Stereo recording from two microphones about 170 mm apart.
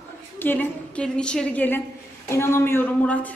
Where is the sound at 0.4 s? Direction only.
10° left (ahead or behind).